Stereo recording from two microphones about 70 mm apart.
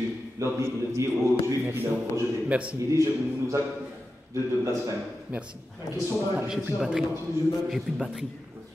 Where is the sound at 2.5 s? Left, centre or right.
Centre.